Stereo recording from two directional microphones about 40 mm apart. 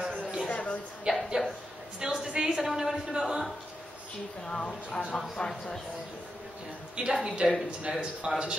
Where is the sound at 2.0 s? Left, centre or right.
Centre.